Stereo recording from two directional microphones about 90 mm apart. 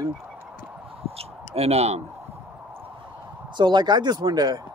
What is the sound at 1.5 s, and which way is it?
Speech, 90° right.